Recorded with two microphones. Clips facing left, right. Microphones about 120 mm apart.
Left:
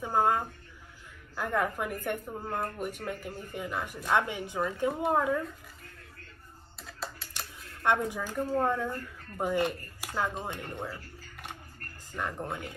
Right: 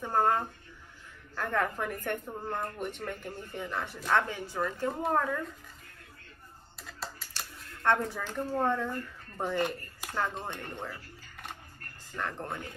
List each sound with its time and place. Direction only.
0.0 s a sound: 10° left (ahead or behind)
1.3 s a woman's voice: 10° left (ahead or behind)
6.8 s typing: centre (ahead or behind)
7.3 s a woman's voice: 15° left (ahead or behind)
12.2 s a woman's voice: 10° left (ahead or behind)